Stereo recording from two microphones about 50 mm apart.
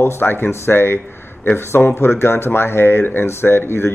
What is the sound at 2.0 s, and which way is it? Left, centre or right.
Speech, left.